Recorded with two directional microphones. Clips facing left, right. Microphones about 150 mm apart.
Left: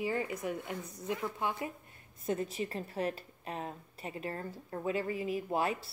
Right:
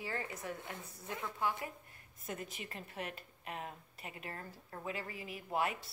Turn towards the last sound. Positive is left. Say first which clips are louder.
# left 4 dB
turn(degrees=30)  # may be behind; listen again after turning